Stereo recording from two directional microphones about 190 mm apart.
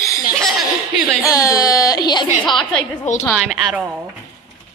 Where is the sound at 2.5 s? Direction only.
5° left (ahead or behind).